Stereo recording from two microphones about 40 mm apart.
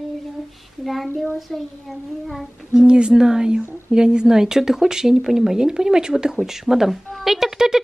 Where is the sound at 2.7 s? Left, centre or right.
Right.